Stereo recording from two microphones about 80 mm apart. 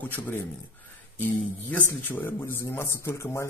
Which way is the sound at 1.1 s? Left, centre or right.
Left.